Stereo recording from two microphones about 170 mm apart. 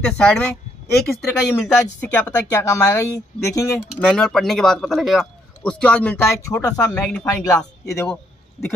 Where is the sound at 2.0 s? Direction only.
10° left (ahead or behind).